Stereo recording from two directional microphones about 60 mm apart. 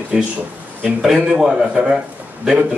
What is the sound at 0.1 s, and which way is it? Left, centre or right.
Speech, centre.